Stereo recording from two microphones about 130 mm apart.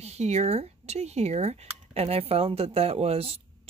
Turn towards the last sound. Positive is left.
turn(degrees=-50)  # may be behind; listen again after turning